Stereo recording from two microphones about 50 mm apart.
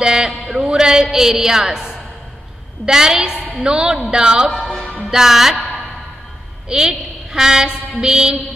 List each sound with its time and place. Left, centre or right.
0.0 s speech: centre
3.3 s a woman's voice: left
3.6 s speech: centre
6.7 s a woman's voice: centre